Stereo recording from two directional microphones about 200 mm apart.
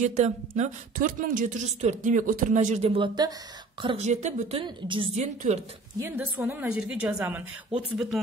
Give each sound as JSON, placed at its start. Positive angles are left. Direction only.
{"t": 0.0, "sound": "speech", "side_deg": -35}
{"t": 5.9, "sound": "a woman's voice", "side_deg": -10}